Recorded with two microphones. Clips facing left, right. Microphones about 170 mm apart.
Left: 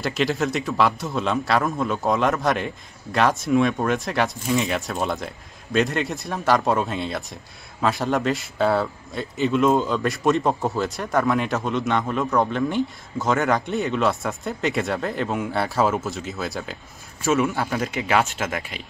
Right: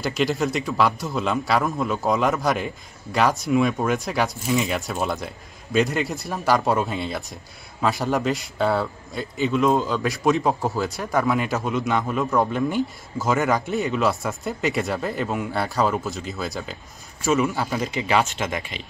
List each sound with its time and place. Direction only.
0.0 s a man's voice: centre (ahead or behind)